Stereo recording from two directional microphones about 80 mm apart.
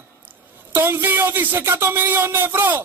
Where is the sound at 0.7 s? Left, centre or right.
Right.